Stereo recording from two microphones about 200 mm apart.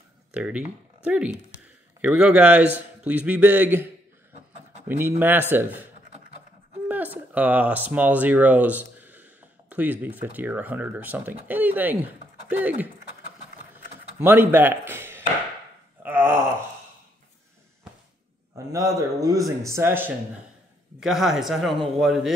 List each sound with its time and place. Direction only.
0.3 s a man's voice: 5° right (ahead or behind)
6.9 s speech: 10° right (ahead or behind)
14.2 s speech: 10° right (ahead or behind)
16.0 s a sound: 10° right (ahead or behind)
18.7 s a man's voice: 15° right (ahead or behind)
21.0 s a man's voice: centre (ahead or behind)